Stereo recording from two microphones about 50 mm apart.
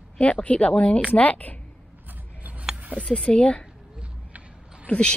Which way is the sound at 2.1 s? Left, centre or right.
Right.